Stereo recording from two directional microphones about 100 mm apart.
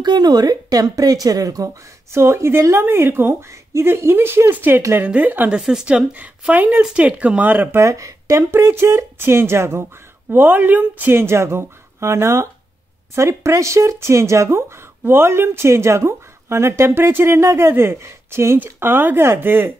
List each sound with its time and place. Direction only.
0.0 s speech: 45° right (ahead or behind)
2.1 s speech: 25° right (ahead or behind)
5.6 s speech: 5° right (ahead or behind)
7.8 s speech: 30° right (ahead or behind)